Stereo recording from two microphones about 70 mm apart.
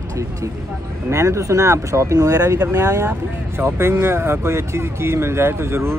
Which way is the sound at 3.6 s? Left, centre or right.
Right.